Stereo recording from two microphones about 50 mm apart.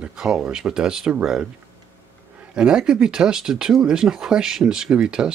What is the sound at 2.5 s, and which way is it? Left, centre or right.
Speech, centre.